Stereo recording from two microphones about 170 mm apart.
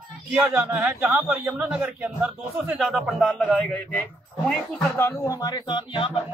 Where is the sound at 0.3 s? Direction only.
10° right (ahead or behind).